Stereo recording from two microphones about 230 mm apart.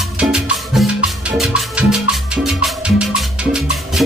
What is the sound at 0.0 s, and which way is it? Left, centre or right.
Music, centre.